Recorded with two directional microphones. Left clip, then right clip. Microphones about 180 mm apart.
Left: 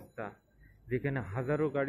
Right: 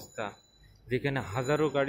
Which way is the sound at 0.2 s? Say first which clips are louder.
Right 5 dB; 15° right (ahead or behind).